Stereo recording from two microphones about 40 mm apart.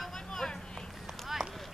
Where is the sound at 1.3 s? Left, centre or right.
Centre.